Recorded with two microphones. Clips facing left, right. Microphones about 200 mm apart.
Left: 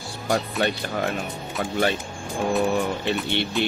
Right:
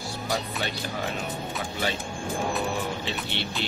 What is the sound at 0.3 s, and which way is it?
Speech, 55° left (ahead or behind).